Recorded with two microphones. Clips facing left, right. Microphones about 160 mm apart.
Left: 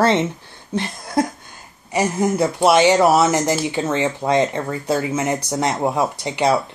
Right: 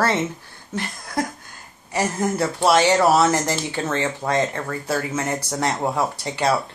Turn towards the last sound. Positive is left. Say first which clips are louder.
# left 3 dB
turn(degrees=20)  # may be behind; listen again after turning